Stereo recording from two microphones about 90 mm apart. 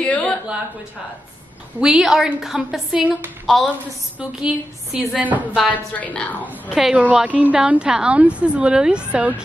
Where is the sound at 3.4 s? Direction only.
5° left (ahead or behind).